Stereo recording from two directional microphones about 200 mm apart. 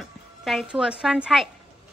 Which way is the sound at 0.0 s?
Centre (ahead or behind).